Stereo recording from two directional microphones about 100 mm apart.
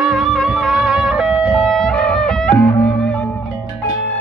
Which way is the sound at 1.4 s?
5° left (ahead or behind).